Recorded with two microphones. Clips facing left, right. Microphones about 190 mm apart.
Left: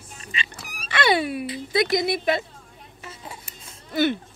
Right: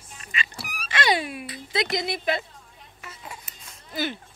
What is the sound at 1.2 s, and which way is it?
Speech, 40° left (ahead or behind).